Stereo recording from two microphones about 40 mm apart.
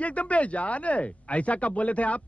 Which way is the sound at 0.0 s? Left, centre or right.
Left.